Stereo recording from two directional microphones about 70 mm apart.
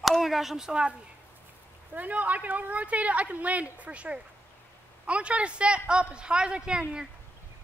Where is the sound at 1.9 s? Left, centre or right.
Right.